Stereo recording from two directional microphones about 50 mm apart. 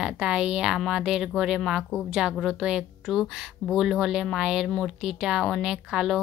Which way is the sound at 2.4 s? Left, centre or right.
Centre.